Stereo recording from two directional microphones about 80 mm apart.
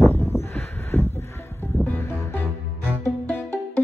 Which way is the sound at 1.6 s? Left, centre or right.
Left.